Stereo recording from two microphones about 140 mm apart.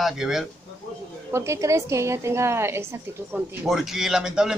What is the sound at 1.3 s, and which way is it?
A woman's voice, 20° right (ahead or behind).